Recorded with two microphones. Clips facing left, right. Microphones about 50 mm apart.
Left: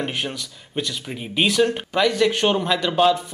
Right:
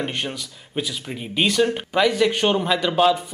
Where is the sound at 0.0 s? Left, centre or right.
Centre.